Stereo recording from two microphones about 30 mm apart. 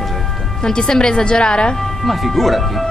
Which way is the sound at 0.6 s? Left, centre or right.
Left.